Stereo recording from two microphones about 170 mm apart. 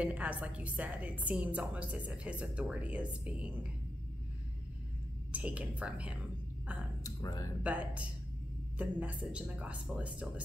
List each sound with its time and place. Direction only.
0.0 s a woman's voice: 10° right (ahead or behind)
5.3 s a woman's voice: 10° right (ahead or behind)
7.0 s speech: 20° left (ahead or behind)
7.6 s a woman's voice: 10° right (ahead or behind)